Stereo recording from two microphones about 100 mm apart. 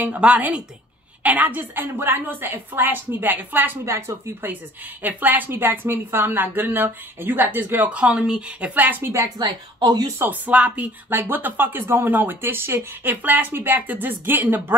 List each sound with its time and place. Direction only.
0.0 s a woman's voice: 15° right (ahead or behind)
9.4 s speech: 45° right (ahead or behind)
10.1 s speech: 20° right (ahead or behind)